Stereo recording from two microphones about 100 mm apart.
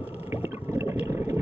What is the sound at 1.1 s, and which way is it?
Vehicle, 30° right (ahead or behind).